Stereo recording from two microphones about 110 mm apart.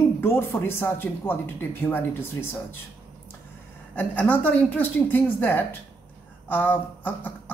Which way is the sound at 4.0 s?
15° left (ahead or behind).